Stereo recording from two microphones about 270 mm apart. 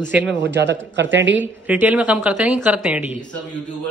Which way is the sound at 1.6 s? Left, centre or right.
Centre.